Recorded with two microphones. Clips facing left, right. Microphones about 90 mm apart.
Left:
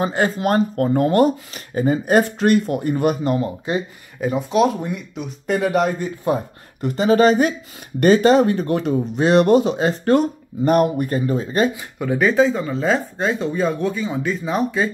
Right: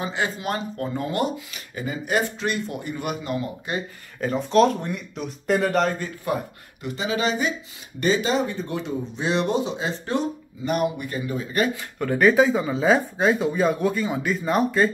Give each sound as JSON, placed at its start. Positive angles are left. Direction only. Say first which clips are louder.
{"t": 0.0, "sound": "speech", "louder": "left 7 dB", "side_deg": 45}
{"t": 4.2, "sound": "speech", "louder": "left 1 dB", "side_deg": 5}
{"t": 5.9, "sound": "speech", "louder": "left 5 dB", "side_deg": 25}
{"t": 6.8, "sound": "speech", "louder": "left 10 dB", "side_deg": 45}
{"t": 11.7, "sound": "speech", "louder": "left 2 dB", "side_deg": 5}